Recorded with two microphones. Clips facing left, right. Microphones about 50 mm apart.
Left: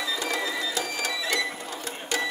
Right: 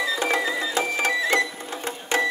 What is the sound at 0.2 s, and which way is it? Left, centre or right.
Music, right.